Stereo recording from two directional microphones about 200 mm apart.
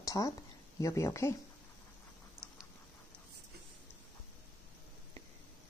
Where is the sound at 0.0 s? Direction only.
15° left (ahead or behind).